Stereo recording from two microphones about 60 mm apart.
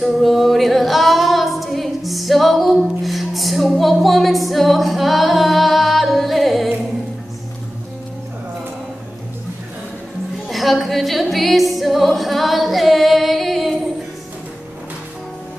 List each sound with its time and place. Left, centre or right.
0.0 s female singing: centre
10.5 s music: centre